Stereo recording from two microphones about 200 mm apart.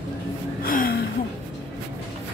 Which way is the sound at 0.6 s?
45° left (ahead or behind).